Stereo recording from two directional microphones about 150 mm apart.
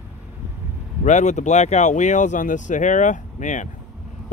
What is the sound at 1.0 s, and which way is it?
Speech, 55° left (ahead or behind).